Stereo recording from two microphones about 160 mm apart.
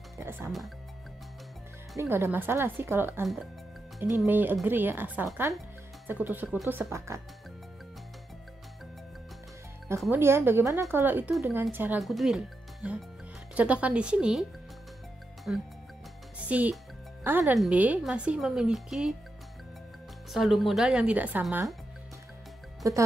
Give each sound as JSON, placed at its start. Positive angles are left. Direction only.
{"t": 0.2, "sound": "music", "side_deg": -15}
{"t": 2.0, "sound": "a woman's voice", "side_deg": -15}
{"t": 4.3, "sound": "a woman's voice", "side_deg": -10}
{"t": 10.1, "sound": "a woman's voice", "side_deg": -15}
{"t": 12.0, "sound": "a woman's voice", "side_deg": 0}
{"t": 15.5, "sound": "a woman's voice", "side_deg": -10}
{"t": 20.3, "sound": "speech", "side_deg": 0}
{"t": 22.8, "sound": "speech", "side_deg": -20}